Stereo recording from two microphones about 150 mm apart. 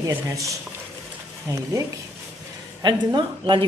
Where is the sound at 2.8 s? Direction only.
30° right (ahead or behind).